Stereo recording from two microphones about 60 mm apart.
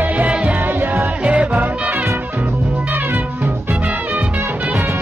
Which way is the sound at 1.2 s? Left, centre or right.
Centre.